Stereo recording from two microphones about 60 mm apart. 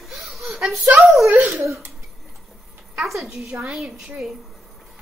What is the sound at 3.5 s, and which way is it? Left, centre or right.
Speech, right.